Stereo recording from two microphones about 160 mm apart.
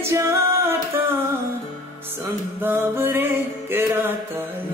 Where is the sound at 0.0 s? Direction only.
15° right (ahead or behind).